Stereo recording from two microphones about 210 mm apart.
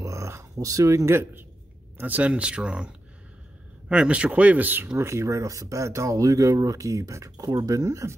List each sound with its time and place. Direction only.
0.0 s a sound: 15° right (ahead or behind)
2.0 s speech: 10° right (ahead or behind)
3.9 s speech: 5° right (ahead or behind)